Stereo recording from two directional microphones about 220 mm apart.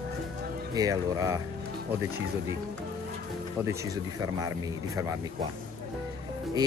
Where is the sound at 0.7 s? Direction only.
15° right (ahead or behind).